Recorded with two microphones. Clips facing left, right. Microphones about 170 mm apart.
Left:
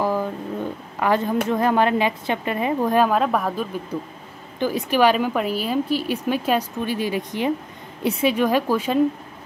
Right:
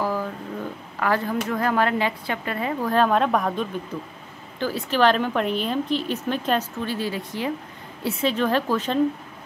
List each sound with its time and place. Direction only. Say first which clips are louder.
0.0 s a sound: left 3 dB; 20° left (ahead or behind)
0.9 s speech: left 3 dB; 20° left (ahead or behind)
3.1 s speech: even; 5° left (ahead or behind)
4.6 s speech: left 3 dB; 15° left (ahead or behind)